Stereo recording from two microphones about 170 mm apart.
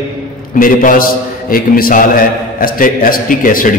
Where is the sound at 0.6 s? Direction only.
55° left (ahead or behind).